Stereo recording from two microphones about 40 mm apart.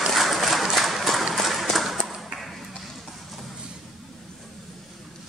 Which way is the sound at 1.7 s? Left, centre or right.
Centre.